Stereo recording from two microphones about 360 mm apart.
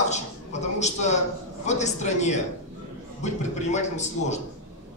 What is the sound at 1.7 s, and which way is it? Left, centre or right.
A man's voice, centre.